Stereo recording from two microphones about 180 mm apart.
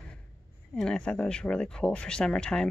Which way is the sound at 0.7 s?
5° left (ahead or behind).